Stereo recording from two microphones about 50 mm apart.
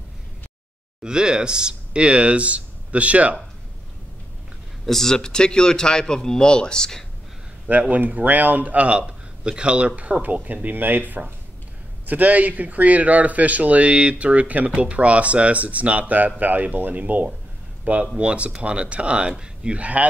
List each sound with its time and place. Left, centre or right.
1.0 s speech: centre
4.8 s speech: centre
7.7 s speech: right; by 19.8 s centre
19.8 s speech: right